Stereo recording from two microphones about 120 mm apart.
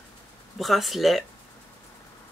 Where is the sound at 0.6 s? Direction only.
Centre (ahead or behind).